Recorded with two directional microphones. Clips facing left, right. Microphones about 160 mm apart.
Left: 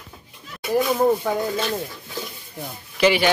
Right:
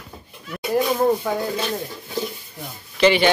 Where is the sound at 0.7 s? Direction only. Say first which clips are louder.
Even; 5° left (ahead or behind).